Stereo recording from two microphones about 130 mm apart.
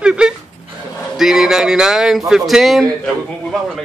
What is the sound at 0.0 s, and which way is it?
Dog, 5° right (ahead or behind).